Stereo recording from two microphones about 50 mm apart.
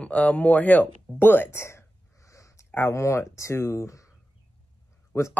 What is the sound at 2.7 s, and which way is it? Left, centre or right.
Speech, left.